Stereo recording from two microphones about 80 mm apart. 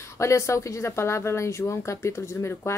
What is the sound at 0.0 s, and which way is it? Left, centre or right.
Speech, left.